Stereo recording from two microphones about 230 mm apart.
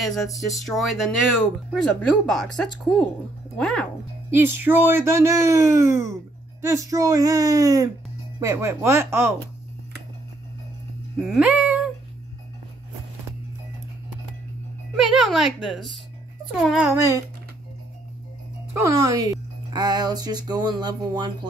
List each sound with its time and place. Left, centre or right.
0.0 s a woman's voice: centre
4.3 s speech: centre
11.2 s music: centre
15.0 s a woman's voice: centre
16.9 s speech: centre
18.7 s speech: centre